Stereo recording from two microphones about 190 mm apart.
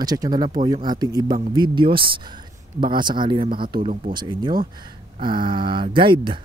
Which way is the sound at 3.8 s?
40° right (ahead or behind).